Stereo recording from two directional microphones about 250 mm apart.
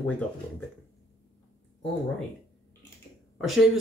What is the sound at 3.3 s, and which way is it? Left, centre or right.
Speech, centre.